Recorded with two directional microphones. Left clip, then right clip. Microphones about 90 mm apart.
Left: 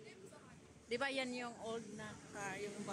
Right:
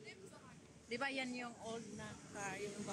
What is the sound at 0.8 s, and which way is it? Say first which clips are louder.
A man's voice: left 2 dB; 75° left (ahead or behind).